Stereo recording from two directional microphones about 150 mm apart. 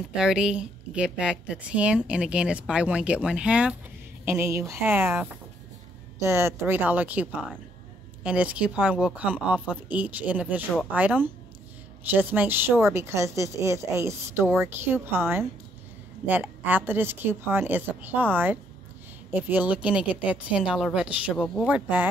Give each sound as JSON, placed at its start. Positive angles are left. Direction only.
{"t": 0.1, "sound": "a woman's voice", "side_deg": -5}